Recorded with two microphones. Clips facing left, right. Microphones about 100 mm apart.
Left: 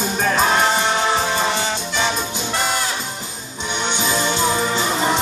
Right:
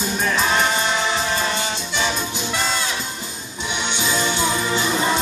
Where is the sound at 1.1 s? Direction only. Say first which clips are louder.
Left 3 dB; 25° left (ahead or behind).